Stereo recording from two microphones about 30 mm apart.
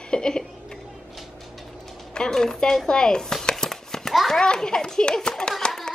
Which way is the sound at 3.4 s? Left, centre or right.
Left.